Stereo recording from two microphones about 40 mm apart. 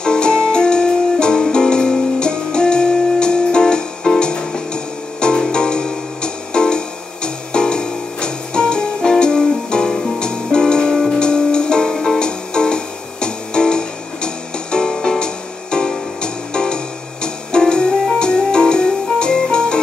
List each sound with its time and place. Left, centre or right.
0.0 s music: left